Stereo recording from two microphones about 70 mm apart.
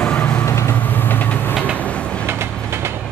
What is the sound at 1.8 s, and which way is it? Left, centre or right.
Train, centre.